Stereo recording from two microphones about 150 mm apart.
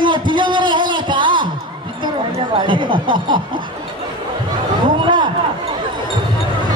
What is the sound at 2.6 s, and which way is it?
Speech, 30° right (ahead or behind).